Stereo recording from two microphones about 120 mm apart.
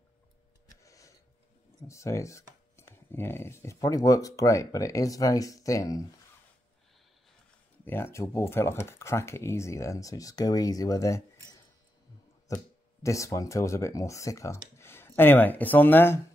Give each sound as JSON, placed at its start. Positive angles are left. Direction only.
{"t": 0.8, "sound": "a sound", "side_deg": 25}
{"t": 1.9, "sound": "speech", "side_deg": 25}
{"t": 7.8, "sound": "speech", "side_deg": 20}
{"t": 12.5, "sound": "speech", "side_deg": 25}